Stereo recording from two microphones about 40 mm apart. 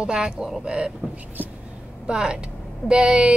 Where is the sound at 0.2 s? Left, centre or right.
Right.